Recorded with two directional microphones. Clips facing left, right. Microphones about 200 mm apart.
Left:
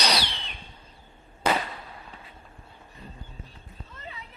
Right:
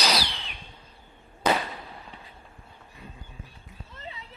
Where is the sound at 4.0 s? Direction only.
25° right (ahead or behind).